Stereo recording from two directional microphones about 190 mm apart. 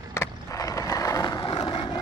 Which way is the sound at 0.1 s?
15° left (ahead or behind).